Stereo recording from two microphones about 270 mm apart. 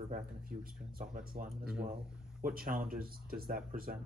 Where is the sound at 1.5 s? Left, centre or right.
Centre.